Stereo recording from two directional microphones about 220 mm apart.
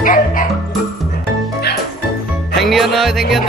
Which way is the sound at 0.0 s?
35° left (ahead or behind).